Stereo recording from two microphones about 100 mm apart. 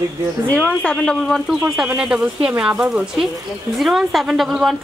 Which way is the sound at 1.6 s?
15° right (ahead or behind).